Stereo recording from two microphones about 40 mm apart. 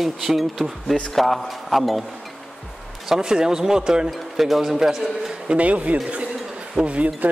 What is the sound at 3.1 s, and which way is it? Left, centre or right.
Speech, centre.